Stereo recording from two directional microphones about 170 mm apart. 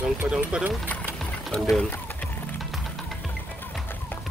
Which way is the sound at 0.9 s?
5° left (ahead or behind).